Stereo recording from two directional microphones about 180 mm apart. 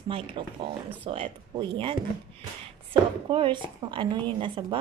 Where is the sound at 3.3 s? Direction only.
25° right (ahead or behind).